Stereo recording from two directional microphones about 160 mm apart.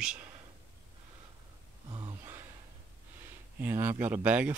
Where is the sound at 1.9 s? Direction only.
25° right (ahead or behind).